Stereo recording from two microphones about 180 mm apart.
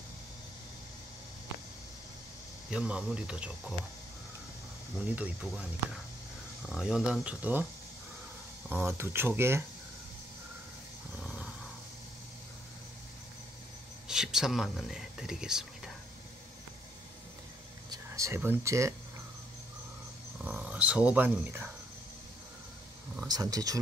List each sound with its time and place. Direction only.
2.7 s speech: 5° right (ahead or behind)
4.9 s speech: 5° right (ahead or behind)
6.7 s speech: 5° right (ahead or behind)
8.6 s speech: 10° right (ahead or behind)
14.0 s speech: 5° right (ahead or behind)
17.8 s a sound: 20° right (ahead or behind)
20.4 s speech: 10° right (ahead or behind)
23.2 s speech: 20° right (ahead or behind)